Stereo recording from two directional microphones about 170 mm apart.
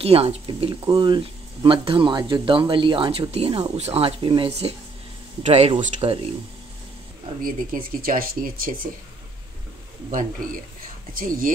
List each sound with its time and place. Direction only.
0.0 s speech: 35° right (ahead or behind)
7.4 s speech: 55° right (ahead or behind)
11.1 s speech: 55° right (ahead or behind)